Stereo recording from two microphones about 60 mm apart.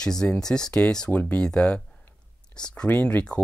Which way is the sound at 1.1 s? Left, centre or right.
Left.